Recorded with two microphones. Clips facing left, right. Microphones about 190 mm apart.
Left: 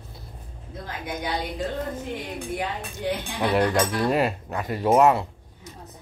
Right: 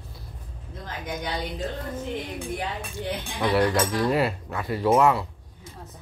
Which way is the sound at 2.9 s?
15° left (ahead or behind).